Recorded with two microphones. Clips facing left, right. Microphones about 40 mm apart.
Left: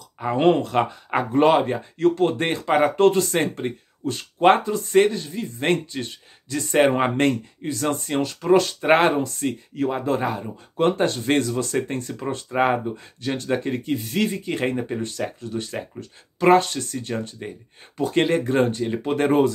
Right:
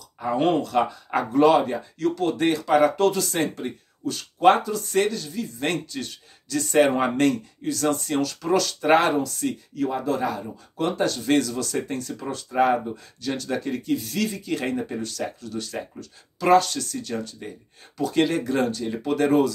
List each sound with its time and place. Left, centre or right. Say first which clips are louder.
0.2 s speech: left 3 dB; left